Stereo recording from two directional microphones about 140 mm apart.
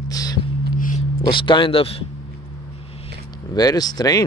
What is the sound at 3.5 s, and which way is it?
Speech, 30° left (ahead or behind).